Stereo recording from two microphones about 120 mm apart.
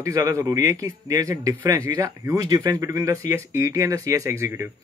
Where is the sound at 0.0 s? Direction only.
25° right (ahead or behind).